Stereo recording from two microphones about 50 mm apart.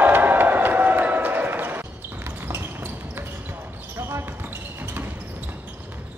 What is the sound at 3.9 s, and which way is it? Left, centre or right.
Basketball bounce, right.